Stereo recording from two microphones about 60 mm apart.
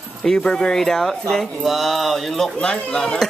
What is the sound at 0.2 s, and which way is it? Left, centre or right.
Speech, centre.